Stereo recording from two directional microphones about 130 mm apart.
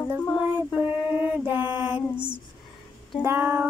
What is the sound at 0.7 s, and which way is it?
Child singing, 10° right (ahead or behind).